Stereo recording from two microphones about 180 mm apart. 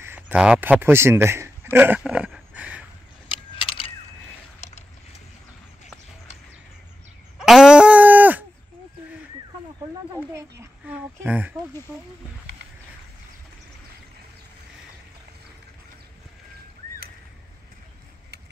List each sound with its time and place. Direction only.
0.0 s speech: 10° right (ahead or behind)
3.3 s mechanisms: 25° left (ahead or behind)
4.6 s vehicle: 40° left (ahead or behind)
7.3 s a sound: centre (ahead or behind)
10.6 s speech: 10° right (ahead or behind)